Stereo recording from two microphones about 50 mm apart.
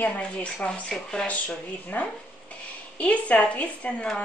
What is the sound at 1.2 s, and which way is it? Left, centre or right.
A woman's voice, left.